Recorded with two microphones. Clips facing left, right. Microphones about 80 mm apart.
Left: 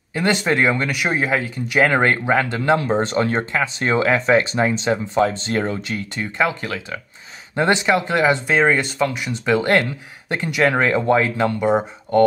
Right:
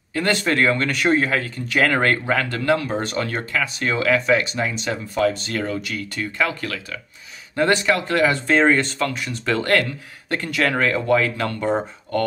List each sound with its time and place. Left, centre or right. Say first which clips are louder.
0.1 s speech: left 2 dB; centre
8.5 s speech: even; centre